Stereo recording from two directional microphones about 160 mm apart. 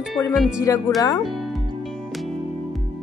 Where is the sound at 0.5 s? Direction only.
20° left (ahead or behind).